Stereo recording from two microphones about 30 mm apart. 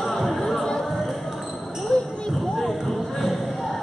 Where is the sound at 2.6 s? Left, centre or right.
Centre.